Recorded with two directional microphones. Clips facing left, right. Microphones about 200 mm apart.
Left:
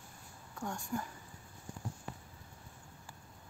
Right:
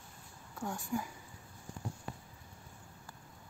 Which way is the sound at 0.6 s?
5° right (ahead or behind).